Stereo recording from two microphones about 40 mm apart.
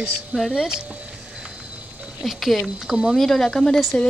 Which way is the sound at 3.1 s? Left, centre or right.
Centre.